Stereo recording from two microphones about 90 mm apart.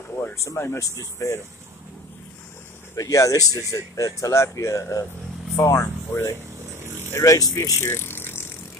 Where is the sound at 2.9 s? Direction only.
35° left (ahead or behind).